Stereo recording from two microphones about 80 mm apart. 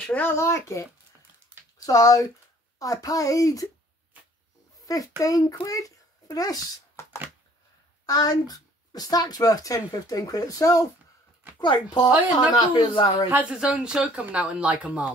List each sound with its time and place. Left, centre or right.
0.0 s speech: left
0.4 s speech: left
1.9 s speech: left
4.8 s a child's voice: left
7.0 s a sound: left
8.0 s speech: left
11.6 s speech: left
13.3 s speech: centre